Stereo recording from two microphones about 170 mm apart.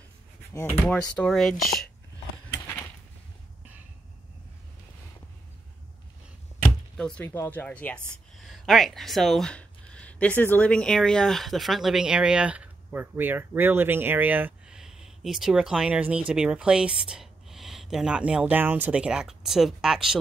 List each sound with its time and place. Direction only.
0.5 s speech: 15° left (ahead or behind)
0.7 s speech: 5° left (ahead or behind)
7.0 s speech: 5° left (ahead or behind)